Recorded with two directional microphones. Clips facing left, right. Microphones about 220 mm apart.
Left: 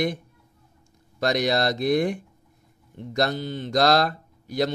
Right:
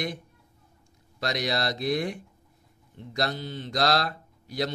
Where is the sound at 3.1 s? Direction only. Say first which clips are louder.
Left 5 dB; 50° left (ahead or behind).